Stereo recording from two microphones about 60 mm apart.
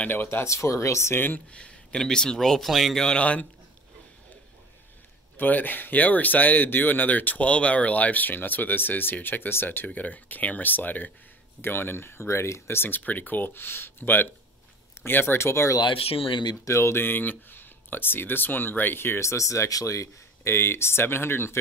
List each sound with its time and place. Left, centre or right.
0.1 s speech: left
0.5 s speech: left
1.5 s speech: centre
5.4 s speech: left
17.0 s speech: left
20.5 s speech: left